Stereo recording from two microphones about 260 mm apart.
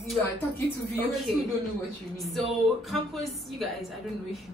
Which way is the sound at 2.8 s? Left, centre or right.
Centre.